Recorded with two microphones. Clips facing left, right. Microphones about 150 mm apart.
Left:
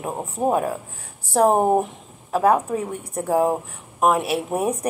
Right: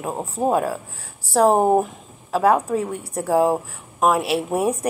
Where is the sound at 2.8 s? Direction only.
20° left (ahead or behind).